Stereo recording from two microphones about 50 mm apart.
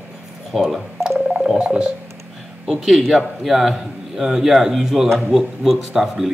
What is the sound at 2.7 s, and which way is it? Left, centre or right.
A man's voice, centre.